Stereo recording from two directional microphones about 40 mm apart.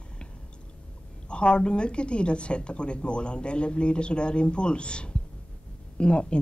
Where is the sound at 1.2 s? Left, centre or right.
Left.